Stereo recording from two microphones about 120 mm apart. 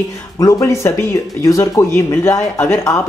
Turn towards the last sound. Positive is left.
turn(degrees=25)  # may be behind; listen again after turning